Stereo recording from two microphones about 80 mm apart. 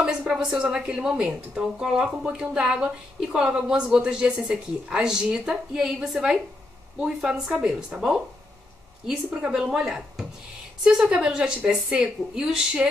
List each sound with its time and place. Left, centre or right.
0.0 s a woman's voice: centre